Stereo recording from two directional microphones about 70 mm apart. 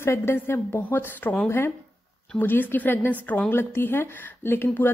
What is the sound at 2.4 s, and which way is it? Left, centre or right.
A woman's voice, left.